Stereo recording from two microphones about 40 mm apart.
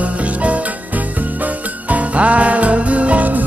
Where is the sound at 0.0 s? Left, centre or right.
Right.